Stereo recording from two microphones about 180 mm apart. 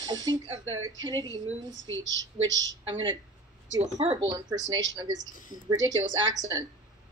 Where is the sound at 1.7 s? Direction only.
90° right.